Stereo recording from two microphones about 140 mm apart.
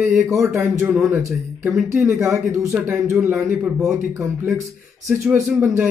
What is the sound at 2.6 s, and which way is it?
Speech, centre (ahead or behind).